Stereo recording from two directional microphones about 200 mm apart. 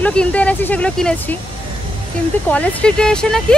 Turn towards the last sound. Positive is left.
turn(degrees=5)  # may be behind; listen again after turning